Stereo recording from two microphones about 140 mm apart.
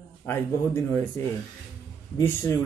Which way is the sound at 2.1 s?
20° left (ahead or behind).